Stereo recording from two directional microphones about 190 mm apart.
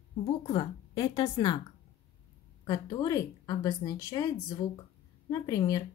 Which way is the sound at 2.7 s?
20° left (ahead or behind).